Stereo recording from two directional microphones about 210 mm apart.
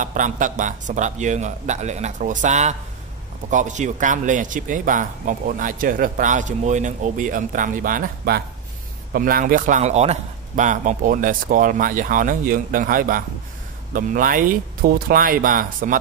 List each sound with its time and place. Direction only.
0.0 s a man's voice: 40° right (ahead or behind)